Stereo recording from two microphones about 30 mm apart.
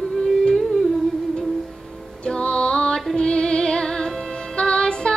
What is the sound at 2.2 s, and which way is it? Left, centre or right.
Music, left.